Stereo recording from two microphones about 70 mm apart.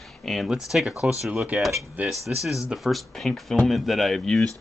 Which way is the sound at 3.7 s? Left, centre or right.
Centre.